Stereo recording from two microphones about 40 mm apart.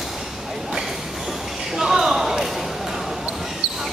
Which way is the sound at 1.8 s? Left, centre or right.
Centre.